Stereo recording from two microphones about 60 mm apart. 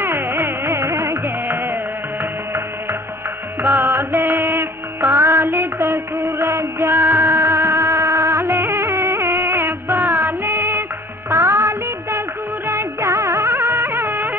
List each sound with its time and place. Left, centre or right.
0.0 s music: right
3.6 s music: right
11.2 s music: right
12.6 s music of bollywood: right